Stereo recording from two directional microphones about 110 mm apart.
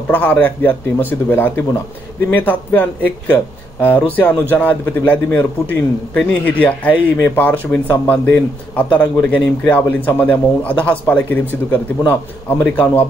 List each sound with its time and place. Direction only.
0.1 s a man's voice: 15° left (ahead or behind)
7.2 s speech: 25° left (ahead or behind)
7.7 s a man's voice: 15° left (ahead or behind)